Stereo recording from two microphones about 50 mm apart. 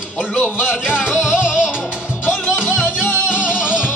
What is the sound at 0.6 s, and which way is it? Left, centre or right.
Music, centre.